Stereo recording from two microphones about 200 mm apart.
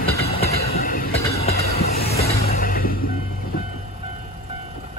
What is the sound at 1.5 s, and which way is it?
Train, 50° left (ahead or behind).